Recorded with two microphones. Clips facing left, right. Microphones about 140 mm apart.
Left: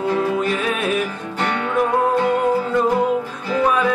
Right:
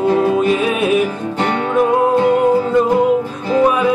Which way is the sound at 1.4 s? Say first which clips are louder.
Right 4 dB; 25° right (ahead or behind).